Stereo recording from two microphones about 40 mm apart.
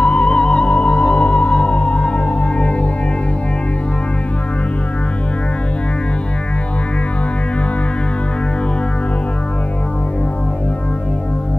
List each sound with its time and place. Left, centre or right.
0.0 s music: left